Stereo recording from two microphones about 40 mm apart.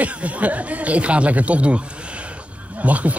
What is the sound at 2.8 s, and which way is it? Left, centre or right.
Speech, right.